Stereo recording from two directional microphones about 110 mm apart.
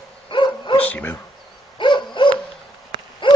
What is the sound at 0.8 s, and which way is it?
Dog, 15° left (ahead or behind).